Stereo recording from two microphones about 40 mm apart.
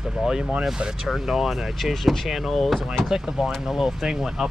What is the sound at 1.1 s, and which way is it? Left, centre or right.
Speech, centre.